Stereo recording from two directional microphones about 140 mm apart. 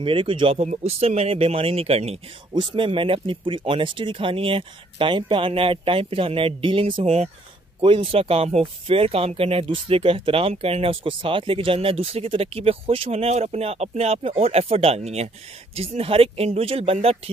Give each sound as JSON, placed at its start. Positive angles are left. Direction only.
{"t": 0.0, "sound": "speech", "side_deg": -40}